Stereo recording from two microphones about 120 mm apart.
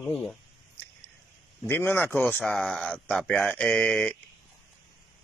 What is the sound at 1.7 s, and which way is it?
Speech, 20° left (ahead or behind).